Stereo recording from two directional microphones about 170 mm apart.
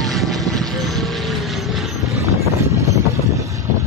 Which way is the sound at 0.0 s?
Centre (ahead or behind).